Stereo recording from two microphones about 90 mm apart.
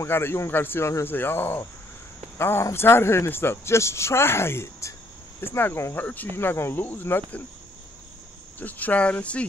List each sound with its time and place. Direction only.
0.0 s speech: 25° left (ahead or behind)
8.5 s speech: 20° left (ahead or behind)